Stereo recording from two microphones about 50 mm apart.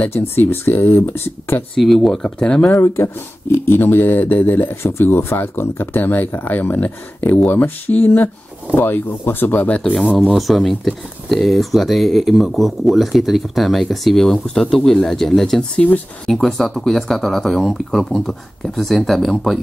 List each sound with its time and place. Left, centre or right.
0.1 s speech: left
1.8 s speech: centre
2.2 s speech: centre
3.6 s speech: left
9.7 s speech: left
10.3 s speech: centre
15.7 s speech: left
16.3 s speech: centre